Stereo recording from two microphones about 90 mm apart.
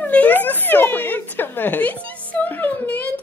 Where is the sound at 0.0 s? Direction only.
15° left (ahead or behind).